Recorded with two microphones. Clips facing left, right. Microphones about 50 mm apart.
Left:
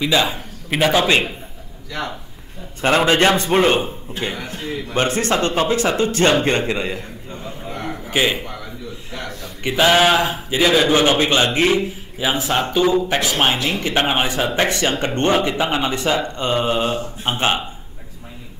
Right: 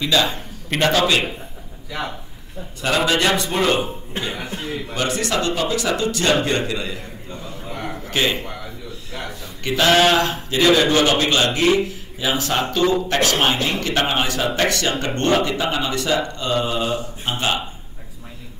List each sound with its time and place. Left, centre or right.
0.0 s a man's voice: centre
0.3 s a sound: centre
0.9 s speech: left
3.1 s speech: left
4.2 s a man's voice: right
4.6 s speech: left
7.9 s a sound: centre
9.6 s a man's voice: centre